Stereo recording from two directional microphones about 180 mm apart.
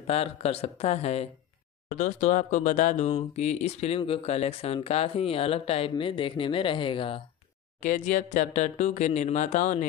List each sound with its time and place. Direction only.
0.0 s speech: 35° left (ahead or behind)
7.8 s speech: 45° left (ahead or behind)